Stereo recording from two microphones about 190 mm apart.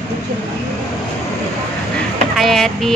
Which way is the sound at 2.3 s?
Centre (ahead or behind).